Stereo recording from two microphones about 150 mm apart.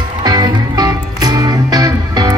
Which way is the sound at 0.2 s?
25° right (ahead or behind).